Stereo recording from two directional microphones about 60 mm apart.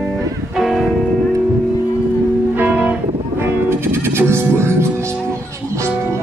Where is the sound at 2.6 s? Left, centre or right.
Right.